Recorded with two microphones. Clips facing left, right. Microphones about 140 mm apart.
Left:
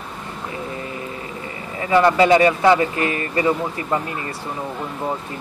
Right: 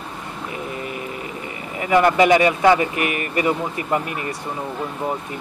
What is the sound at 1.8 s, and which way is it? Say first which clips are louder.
A man's voice: even; 15° right (ahead or behind).